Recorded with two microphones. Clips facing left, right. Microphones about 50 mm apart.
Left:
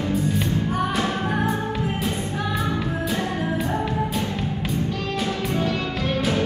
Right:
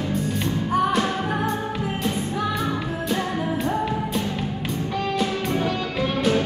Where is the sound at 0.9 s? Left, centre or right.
Centre.